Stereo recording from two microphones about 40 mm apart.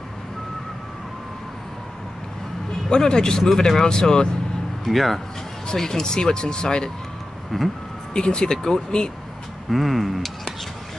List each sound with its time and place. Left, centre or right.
2.9 s speech: centre
4.8 s speech: centre
7.5 s speech: centre
8.1 s speech: left
9.7 s speech: centre